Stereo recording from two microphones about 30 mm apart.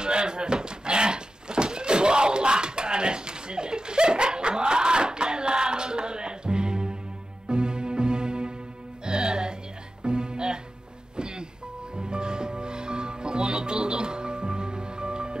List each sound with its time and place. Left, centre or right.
0.0 s dog: right
7.4 s music: right
11.1 s a sound: right
12.0 s music: right